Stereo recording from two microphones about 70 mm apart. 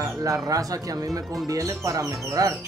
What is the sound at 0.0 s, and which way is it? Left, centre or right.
Speech, right.